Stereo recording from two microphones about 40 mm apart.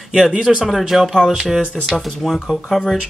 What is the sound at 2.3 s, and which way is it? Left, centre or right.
Speech, centre.